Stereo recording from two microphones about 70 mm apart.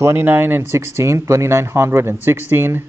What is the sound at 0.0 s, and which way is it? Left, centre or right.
Speech, right.